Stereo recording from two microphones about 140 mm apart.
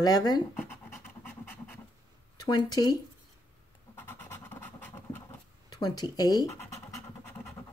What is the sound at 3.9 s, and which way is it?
Scratch, 15° left (ahead or behind).